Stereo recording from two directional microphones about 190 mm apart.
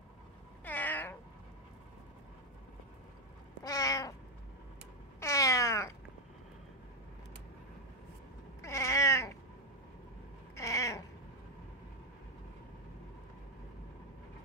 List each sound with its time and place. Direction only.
0.7 s cat: 10° left (ahead or behind)
3.6 s cat: 20° left (ahead or behind)
5.2 s cat: 15° left (ahead or behind)
8.6 s cat: 15° left (ahead or behind)
10.5 s cat: 15° left (ahead or behind)